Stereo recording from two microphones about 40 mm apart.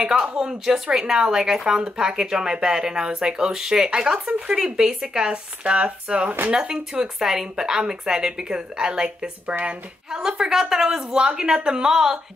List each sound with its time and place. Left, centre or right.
0.0 s speech: centre
5.6 s speech: right; by 12.2 s centre